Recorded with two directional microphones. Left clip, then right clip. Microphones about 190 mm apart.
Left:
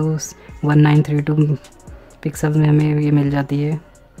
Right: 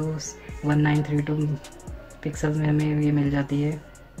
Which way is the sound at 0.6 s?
35° left (ahead or behind).